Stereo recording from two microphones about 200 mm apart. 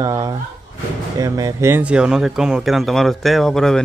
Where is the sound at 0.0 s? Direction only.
20° right (ahead or behind).